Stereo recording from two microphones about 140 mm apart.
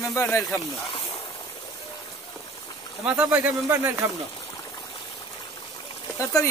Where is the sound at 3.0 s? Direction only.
10° right (ahead or behind).